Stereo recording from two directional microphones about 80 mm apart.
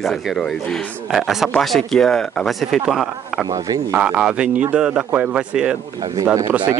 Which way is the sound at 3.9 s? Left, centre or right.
Centre.